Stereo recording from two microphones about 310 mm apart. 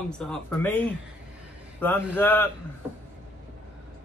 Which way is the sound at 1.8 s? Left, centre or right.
Centre.